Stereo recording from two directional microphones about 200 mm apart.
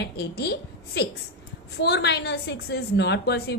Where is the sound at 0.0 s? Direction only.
55° left (ahead or behind).